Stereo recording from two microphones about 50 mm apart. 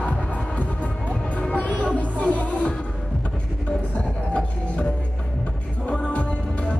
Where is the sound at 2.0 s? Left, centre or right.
Left.